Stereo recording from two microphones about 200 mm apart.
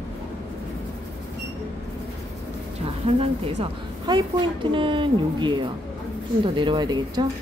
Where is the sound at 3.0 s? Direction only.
30° right (ahead or behind).